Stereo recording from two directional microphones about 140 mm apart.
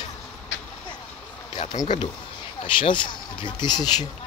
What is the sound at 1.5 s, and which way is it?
Speech, 30° left (ahead or behind).